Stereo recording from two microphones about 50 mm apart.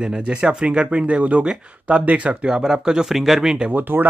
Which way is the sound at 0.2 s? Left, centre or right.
Centre.